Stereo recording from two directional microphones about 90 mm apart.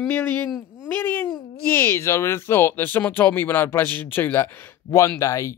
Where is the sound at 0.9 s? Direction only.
25° left (ahead or behind).